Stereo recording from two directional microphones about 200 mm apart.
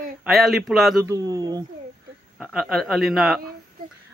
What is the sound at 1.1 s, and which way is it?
Speech, 20° right (ahead or behind).